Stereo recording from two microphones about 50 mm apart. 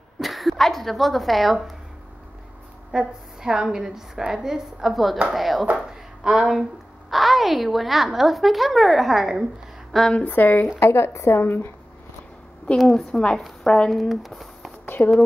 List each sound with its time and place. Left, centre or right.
0.2 s speech: centre
2.9 s a woman's voice: centre
10.1 s speech: left
10.8 s a woman's voice: left
12.7 s a woman's voice: centre
13.1 s speech: centre
13.9 s speech: centre
14.9 s speech: left